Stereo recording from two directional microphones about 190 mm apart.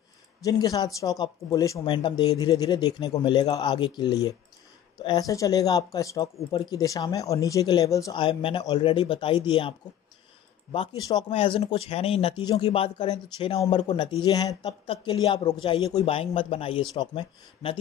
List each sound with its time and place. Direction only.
0.4 s speech: 20° left (ahead or behind)